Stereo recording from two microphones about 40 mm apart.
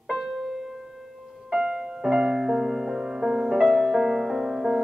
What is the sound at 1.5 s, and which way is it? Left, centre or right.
Music, centre.